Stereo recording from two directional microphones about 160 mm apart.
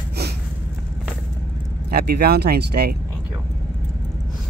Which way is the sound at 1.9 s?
80° right.